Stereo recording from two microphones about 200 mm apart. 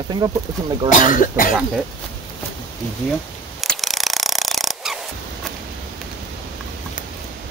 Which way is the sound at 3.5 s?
Centre (ahead or behind).